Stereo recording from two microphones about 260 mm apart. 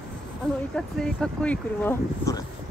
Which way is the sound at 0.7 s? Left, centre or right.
Centre.